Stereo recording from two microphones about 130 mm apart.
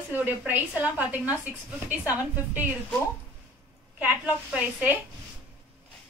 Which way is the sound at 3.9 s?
10° right (ahead or behind).